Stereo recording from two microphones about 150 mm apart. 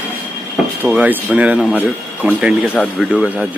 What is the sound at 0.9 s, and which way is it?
Speech, 5° right (ahead or behind).